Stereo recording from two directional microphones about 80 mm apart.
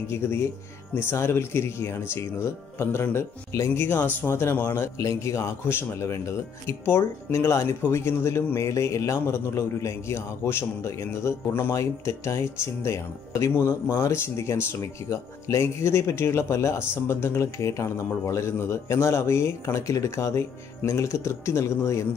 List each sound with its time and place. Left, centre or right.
0.1 s speech: left